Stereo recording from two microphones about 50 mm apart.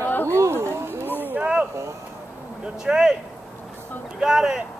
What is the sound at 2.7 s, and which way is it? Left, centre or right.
Speech, centre.